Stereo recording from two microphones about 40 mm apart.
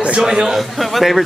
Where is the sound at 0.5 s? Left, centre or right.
Centre.